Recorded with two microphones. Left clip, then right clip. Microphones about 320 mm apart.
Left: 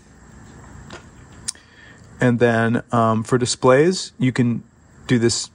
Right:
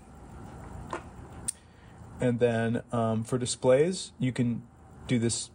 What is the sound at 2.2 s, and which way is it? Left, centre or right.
Speech, left.